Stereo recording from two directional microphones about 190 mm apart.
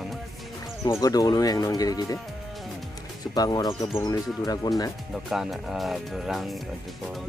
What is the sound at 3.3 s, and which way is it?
Speech, 20° left (ahead or behind).